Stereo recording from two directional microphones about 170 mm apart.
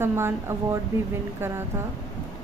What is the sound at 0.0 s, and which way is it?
Speech, 15° right (ahead or behind).